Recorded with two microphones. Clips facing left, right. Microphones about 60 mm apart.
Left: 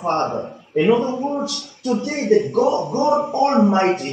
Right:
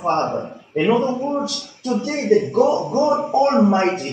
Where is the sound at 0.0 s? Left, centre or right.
Centre.